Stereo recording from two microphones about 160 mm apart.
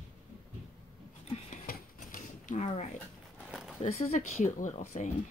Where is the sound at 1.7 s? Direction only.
55° left (ahead or behind).